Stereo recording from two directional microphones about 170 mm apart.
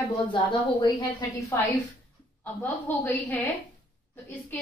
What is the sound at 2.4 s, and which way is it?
A woman's voice, 10° left (ahead or behind).